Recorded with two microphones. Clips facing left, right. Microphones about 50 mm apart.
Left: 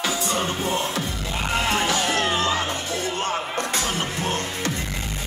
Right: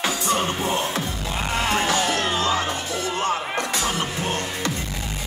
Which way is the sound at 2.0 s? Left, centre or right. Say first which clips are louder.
Even; left.